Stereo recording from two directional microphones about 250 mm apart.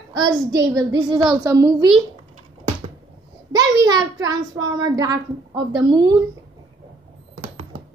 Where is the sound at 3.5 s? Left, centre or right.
Centre.